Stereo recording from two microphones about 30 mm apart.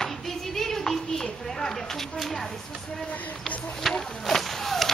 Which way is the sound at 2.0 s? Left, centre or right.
Centre.